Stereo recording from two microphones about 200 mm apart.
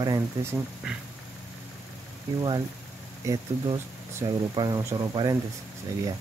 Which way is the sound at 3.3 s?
15° right (ahead or behind).